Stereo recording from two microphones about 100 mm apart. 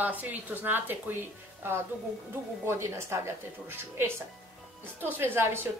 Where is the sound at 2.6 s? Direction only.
25° right (ahead or behind).